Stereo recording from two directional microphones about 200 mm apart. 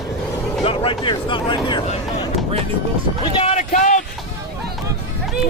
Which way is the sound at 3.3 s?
35° left (ahead or behind).